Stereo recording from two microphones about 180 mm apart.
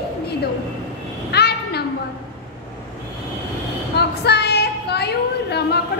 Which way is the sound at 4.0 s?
65° left (ahead or behind).